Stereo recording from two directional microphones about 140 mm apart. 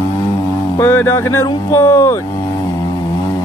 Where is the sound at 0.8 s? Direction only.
15° left (ahead or behind).